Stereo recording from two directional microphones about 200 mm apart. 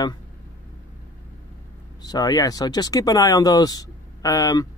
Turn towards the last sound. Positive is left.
turn(degrees=20)  # may be behind; listen again after turning